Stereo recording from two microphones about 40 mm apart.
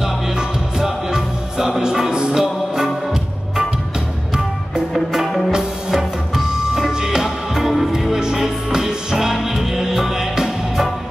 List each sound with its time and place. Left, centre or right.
0.0 s music: centre
4.9 s music: centre